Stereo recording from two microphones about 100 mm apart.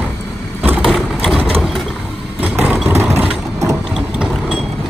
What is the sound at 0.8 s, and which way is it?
Vehicle, centre (ahead or behind).